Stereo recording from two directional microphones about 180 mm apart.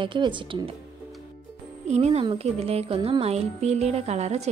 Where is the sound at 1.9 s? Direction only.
35° right (ahead or behind).